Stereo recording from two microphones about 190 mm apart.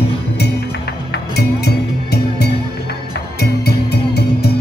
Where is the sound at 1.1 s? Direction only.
60° left (ahead or behind).